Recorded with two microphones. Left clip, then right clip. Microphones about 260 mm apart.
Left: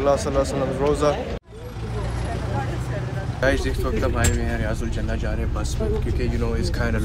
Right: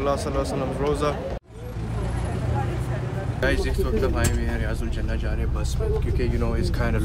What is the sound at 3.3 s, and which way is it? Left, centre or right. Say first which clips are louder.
Speech: left 3 dB; centre.